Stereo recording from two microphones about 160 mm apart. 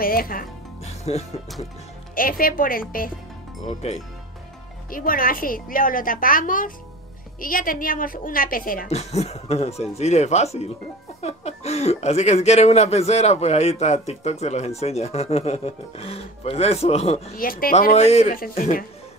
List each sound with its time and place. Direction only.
0.0 s a woman's voice: 65° left (ahead or behind)
0.8 s music: 40° left (ahead or behind)
2.1 s a woman's voice: 60° left (ahead or behind)
4.9 s a woman's voice: 60° left (ahead or behind)
8.8 s speech: 45° left (ahead or behind)
17.4 s a woman's voice: 65° left (ahead or behind)
17.9 s speech: 40° left (ahead or behind)